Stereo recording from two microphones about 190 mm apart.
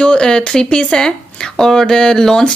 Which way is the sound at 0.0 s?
5° left (ahead or behind).